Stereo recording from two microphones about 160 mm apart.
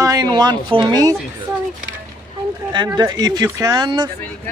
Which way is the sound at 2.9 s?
25° right (ahead or behind).